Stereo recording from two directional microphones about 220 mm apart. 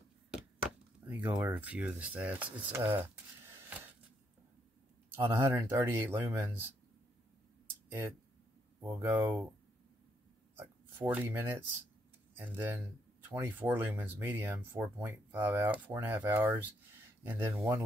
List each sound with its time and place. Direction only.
1.0 s speech: 10° right (ahead or behind)
2.9 s a sound: 10° right (ahead or behind)
5.1 s speech: 10° right (ahead or behind)
9.0 s speech: 10° right (ahead or behind)
10.5 s speech: 10° right (ahead or behind)